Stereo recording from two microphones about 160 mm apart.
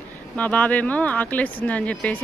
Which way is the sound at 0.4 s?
10° left (ahead or behind).